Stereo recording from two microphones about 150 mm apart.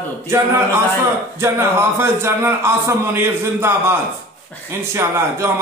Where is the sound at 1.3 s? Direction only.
15° right (ahead or behind).